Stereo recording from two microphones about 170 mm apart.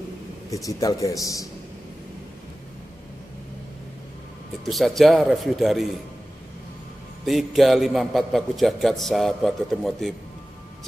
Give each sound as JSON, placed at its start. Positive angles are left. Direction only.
{"t": 0.7, "sound": "a man's voice", "side_deg": 20}
{"t": 4.6, "sound": "a man's voice", "side_deg": 0}
{"t": 7.2, "sound": "a man's voice", "side_deg": 0}